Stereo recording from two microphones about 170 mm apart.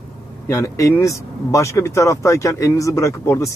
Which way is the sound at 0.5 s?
20° left (ahead or behind).